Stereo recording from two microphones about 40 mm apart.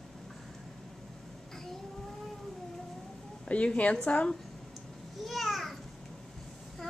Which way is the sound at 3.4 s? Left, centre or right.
Left.